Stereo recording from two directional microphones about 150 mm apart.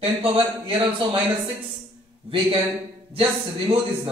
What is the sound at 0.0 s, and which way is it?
Speech, 35° right (ahead or behind).